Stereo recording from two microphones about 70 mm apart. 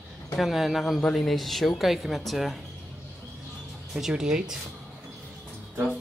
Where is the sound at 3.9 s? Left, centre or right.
Centre.